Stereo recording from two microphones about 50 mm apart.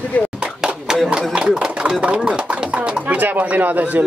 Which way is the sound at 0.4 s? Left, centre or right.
Centre.